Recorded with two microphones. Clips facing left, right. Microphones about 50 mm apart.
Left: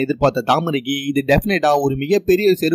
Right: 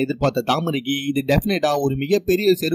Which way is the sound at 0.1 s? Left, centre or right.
Left.